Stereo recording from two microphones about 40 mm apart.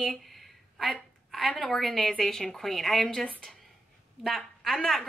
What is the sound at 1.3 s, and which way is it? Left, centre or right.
A woman's voice, centre.